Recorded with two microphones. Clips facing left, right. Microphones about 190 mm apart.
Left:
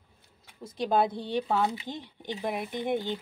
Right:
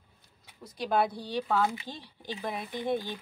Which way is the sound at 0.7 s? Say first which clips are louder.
Left 2 dB; 20° left (ahead or behind).